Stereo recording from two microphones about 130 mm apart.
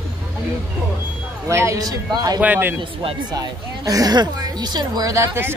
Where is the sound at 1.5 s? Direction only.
20° right (ahead or behind).